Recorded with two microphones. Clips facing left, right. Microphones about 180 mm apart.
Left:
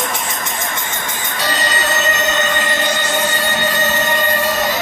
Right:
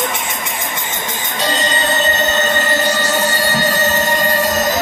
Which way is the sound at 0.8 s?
15° right (ahead or behind).